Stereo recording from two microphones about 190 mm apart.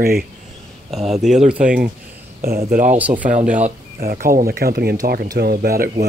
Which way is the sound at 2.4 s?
50° right (ahead or behind).